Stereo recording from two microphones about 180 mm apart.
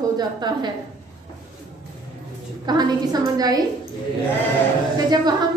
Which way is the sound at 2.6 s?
20° right (ahead or behind).